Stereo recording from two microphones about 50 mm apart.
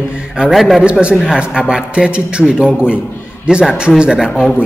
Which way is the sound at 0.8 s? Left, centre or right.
Right.